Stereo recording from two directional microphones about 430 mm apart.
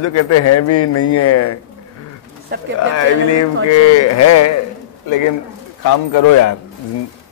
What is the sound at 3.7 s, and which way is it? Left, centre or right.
Speech, left.